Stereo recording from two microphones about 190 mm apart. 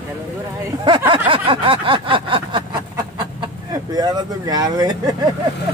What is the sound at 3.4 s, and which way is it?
Speech, 20° right (ahead or behind).